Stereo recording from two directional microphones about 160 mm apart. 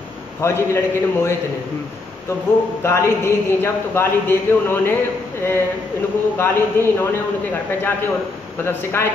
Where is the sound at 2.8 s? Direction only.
15° left (ahead or behind).